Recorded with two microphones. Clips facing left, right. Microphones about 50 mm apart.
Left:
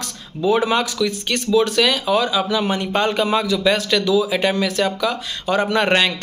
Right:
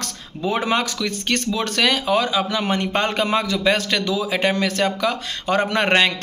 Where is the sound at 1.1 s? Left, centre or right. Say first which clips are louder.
Left 2 dB; right.